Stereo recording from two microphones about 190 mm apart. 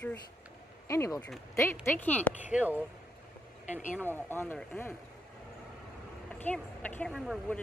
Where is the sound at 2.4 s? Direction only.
5° right (ahead or behind).